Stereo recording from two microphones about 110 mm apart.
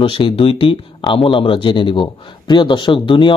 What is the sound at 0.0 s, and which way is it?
Speech, 55° left (ahead or behind).